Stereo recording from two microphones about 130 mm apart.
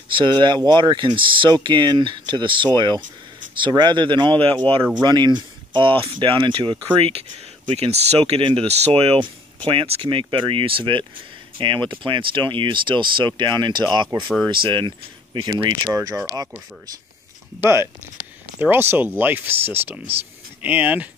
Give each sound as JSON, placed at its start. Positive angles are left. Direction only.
{"t": 0.1, "sound": "speech", "side_deg": -35}
{"t": 7.1, "sound": "speech", "side_deg": -50}
{"t": 15.9, "sound": "speech", "side_deg": -25}
{"t": 17.6, "sound": "speech", "side_deg": -20}